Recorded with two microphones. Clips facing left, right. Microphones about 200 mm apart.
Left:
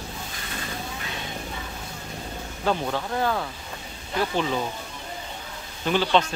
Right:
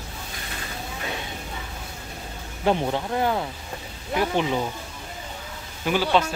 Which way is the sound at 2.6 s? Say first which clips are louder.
Right 3 dB; 20° right (ahead or behind).